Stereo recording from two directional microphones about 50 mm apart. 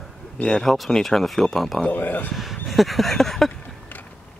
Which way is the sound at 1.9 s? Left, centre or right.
Left.